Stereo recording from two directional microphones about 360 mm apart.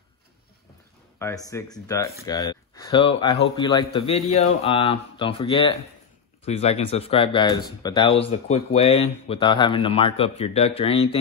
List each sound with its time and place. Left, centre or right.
1.2 s speech: centre